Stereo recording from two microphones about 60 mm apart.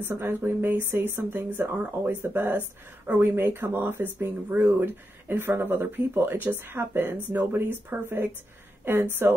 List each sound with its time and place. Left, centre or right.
0.0 s speech: right